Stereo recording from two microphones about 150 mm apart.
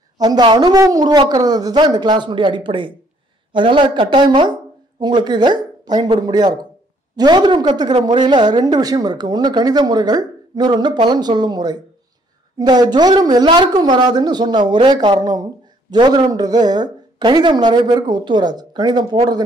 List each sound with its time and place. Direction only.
0.2 s a woman's voice: 30° right (ahead or behind)